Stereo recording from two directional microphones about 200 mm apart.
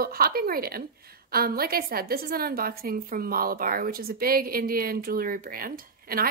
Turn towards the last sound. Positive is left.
turn(degrees=-45)  # may be behind; listen again after turning